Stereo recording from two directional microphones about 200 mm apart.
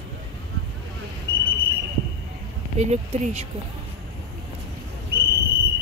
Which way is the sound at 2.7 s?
35° right (ahead or behind).